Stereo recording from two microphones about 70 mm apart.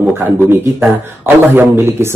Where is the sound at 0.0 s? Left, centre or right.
Right.